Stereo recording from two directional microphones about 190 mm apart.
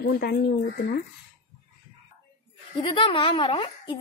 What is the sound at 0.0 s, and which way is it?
Speech, 60° left (ahead or behind).